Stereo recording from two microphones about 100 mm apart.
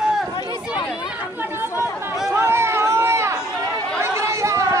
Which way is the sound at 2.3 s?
25° right (ahead or behind).